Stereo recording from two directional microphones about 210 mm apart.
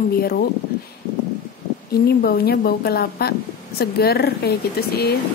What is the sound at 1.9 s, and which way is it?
Speech, 45° left (ahead or behind).